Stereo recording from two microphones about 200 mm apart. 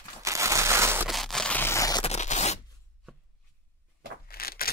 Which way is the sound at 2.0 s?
35° left (ahead or behind).